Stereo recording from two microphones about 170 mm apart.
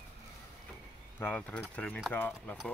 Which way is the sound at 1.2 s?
10° left (ahead or behind).